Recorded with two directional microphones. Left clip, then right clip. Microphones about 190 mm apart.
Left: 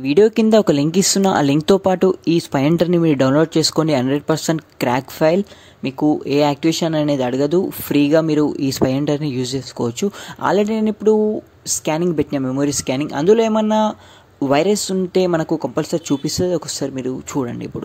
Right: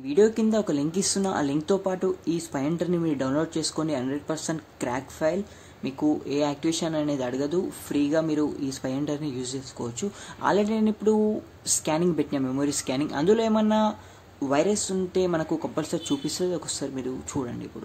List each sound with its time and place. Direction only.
0.0 s speech: 45° left (ahead or behind)